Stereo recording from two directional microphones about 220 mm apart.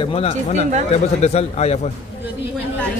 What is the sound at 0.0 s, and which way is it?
Speech, 25° left (ahead or behind).